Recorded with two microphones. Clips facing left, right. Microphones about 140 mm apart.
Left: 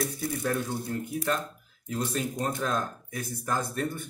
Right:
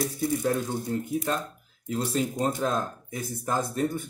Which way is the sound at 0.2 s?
25° right (ahead or behind).